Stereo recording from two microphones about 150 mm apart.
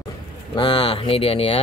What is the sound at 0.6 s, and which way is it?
Speech, 35° left (ahead or behind).